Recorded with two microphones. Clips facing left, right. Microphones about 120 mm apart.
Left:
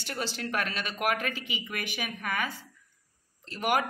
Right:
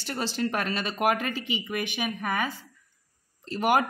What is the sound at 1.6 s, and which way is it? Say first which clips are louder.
Speech: right 5 dB; 20° right (ahead or behind).